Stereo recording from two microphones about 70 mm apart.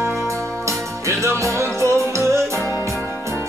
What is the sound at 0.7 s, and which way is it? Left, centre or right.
Music, right.